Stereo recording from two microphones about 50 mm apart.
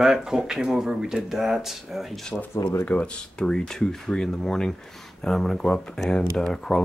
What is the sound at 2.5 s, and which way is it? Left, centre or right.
Speech, left.